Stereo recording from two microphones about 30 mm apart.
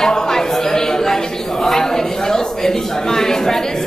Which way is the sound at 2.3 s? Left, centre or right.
Centre.